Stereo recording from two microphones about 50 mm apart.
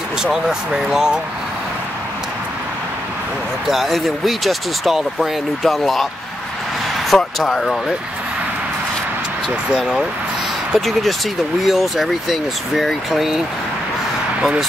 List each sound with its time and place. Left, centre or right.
0.2 s speech: centre
3.6 s speech: centre
7.1 s speech: centre
10.7 s speech: centre